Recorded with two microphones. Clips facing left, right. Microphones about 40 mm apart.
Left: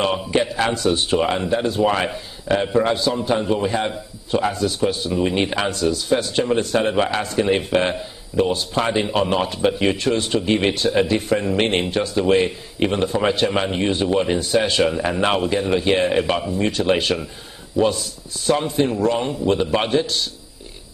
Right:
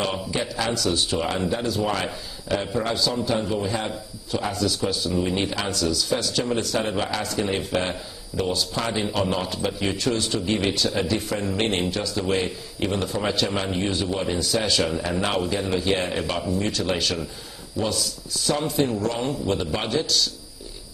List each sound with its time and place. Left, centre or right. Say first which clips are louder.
0.0 s a man's voice: left 6 dB; left